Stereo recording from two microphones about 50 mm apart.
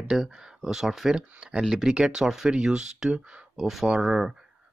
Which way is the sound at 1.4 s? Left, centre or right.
Centre.